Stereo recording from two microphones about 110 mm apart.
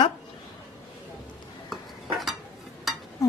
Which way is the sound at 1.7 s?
Centre (ahead or behind).